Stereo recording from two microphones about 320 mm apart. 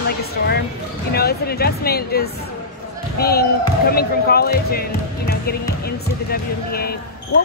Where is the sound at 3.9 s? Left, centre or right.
Left.